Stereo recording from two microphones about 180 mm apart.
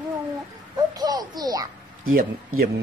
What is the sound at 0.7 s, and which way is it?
Speech, 20° right (ahead or behind).